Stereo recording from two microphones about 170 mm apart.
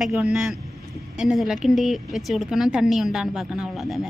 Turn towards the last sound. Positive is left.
turn(degrees=-5)  # may be behind; listen again after turning